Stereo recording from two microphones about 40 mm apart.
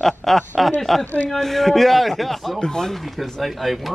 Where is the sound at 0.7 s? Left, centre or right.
Centre.